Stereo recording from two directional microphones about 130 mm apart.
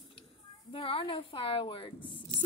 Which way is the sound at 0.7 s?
45° left (ahead or behind).